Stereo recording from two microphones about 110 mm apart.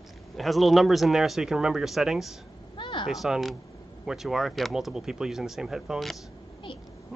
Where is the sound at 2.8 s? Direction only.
45° left (ahead or behind).